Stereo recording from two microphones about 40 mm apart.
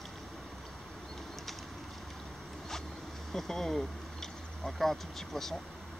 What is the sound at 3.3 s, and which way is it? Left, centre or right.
Speech, centre.